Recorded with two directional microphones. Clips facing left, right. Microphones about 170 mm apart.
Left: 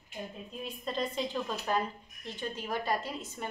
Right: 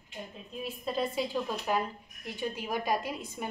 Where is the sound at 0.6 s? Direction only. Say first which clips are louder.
Right 3 dB; 5° right (ahead or behind).